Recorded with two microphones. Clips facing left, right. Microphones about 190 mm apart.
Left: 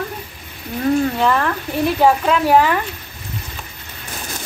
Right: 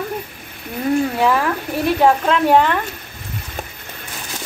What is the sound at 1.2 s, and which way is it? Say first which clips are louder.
Speech: right 1 dB; 5° right (ahead or behind).